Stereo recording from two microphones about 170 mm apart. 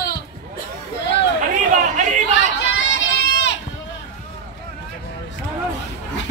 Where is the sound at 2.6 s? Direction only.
90° left.